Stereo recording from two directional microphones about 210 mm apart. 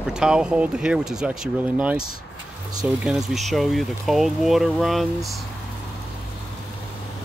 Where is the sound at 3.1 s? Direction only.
Centre (ahead or behind).